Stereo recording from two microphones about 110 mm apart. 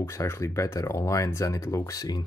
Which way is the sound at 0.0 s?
25° left (ahead or behind).